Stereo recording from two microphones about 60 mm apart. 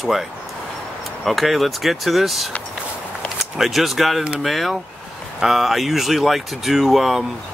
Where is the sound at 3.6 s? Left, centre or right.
Centre.